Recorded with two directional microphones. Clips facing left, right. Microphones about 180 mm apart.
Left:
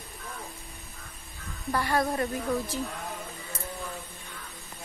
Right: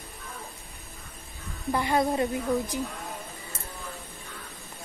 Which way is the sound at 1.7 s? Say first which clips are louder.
Right 2 dB; 20° right (ahead or behind).